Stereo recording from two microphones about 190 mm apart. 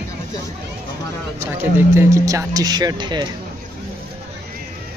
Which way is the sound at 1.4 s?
10° right (ahead or behind).